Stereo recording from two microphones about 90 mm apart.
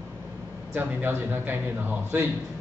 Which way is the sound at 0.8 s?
25° right (ahead or behind).